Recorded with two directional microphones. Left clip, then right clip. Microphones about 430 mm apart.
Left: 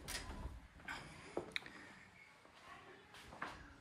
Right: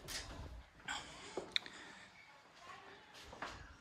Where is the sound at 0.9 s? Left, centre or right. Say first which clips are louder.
Right 3 dB; centre.